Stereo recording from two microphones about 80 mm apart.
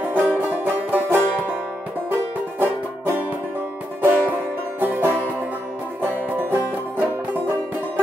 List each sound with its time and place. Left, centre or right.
0.0 s music: right
2.6 s music: right